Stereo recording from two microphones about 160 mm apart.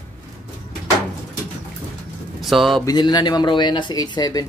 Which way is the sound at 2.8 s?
25° left (ahead or behind).